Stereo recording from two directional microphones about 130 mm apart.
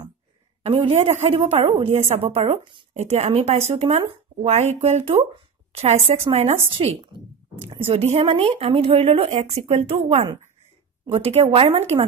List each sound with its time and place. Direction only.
0.7 s a woman's voice: 50° right (ahead or behind)